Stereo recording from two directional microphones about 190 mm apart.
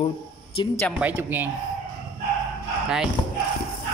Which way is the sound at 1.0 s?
10° right (ahead or behind).